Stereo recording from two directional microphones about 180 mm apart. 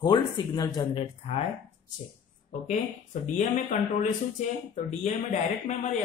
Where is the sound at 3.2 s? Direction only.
45° left (ahead or behind).